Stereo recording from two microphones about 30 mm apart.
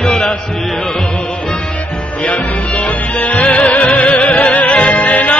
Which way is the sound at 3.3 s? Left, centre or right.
Left.